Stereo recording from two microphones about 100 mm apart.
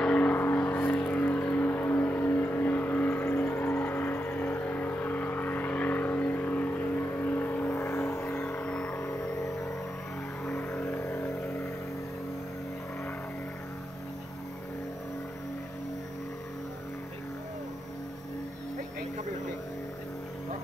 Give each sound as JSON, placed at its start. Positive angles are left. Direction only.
{"t": 0.0, "sound": "vehicle", "side_deg": 10}
{"t": 8.5, "sound": "vehicle", "side_deg": 10}
{"t": 10.6, "sound": "vehicle", "side_deg": 25}